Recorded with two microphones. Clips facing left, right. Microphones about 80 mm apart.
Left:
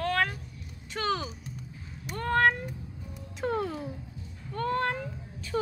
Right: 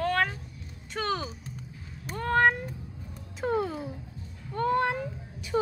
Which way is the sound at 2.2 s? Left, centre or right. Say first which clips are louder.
Right 1 dB; centre.